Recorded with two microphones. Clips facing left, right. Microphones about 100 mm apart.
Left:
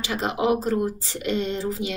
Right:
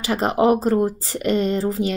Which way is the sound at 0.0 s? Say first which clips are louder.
Right 6 dB; 40° right (ahead or behind).